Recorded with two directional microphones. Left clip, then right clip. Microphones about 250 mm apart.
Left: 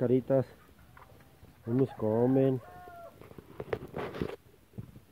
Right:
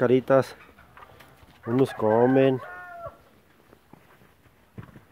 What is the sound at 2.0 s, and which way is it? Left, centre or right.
Speech, right.